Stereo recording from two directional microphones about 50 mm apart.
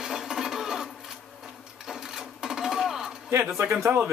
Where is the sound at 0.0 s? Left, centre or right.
Centre.